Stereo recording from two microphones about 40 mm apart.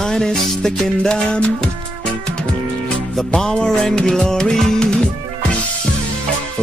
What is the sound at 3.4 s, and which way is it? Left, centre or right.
Music, centre.